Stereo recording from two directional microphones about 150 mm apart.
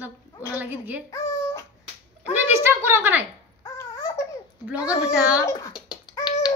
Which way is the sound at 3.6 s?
20° left (ahead or behind).